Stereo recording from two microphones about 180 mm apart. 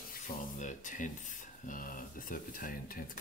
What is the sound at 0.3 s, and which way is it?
Speech, 45° left (ahead or behind).